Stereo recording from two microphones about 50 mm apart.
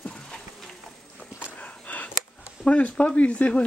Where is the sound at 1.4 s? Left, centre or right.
Left.